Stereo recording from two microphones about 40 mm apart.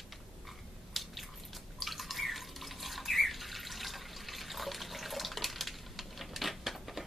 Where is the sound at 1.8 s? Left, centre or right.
Centre.